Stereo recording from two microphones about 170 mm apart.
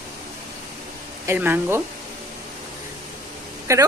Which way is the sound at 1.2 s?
15° right (ahead or behind).